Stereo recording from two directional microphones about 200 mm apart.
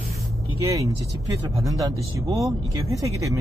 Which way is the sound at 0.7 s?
15° right (ahead or behind).